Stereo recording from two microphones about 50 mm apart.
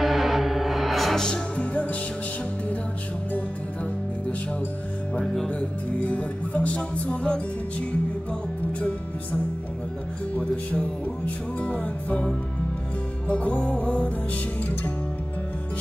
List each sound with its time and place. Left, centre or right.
0.0 s music: centre
1.6 s music: left
5.2 s music: centre
5.9 s music: left
13.3 s music: left